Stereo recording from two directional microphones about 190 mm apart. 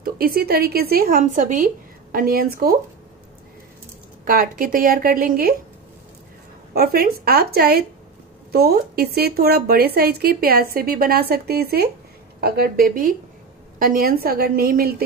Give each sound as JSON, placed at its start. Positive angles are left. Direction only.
{"t": 0.0, "sound": "a woman's voice", "side_deg": -50}
{"t": 4.2, "sound": "a woman's voice", "side_deg": -50}
{"t": 6.7, "sound": "a woman's voice", "side_deg": -55}